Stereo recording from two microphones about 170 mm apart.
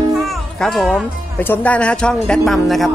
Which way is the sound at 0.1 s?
Centre (ahead or behind).